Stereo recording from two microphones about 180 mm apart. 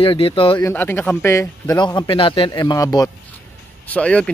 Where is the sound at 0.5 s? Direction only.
10° left (ahead or behind).